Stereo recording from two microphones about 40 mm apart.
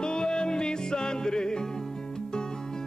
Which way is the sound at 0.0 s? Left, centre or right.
Centre.